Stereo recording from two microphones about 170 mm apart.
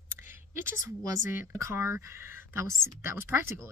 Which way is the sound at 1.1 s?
15° right (ahead or behind).